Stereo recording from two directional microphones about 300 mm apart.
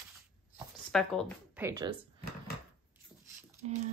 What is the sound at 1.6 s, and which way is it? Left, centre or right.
Speech, centre.